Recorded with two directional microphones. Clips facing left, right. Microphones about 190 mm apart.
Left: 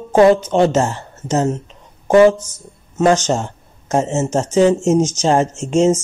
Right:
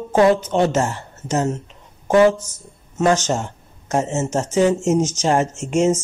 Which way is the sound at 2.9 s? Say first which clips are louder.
Left 3 dB; 20° left (ahead or behind).